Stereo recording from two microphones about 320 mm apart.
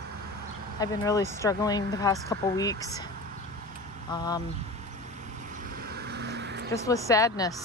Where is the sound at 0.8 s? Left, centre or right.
Centre.